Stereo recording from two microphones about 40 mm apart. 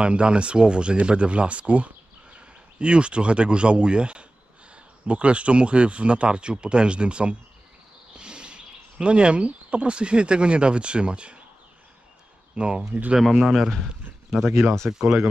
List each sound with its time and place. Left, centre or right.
0.0 s speech: right
12.5 s speech: right
13.2 s a man's voice: centre
14.9 s a man's voice: centre